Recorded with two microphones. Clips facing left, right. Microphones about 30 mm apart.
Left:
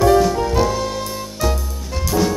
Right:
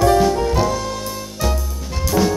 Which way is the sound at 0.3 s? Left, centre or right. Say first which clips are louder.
Even; centre.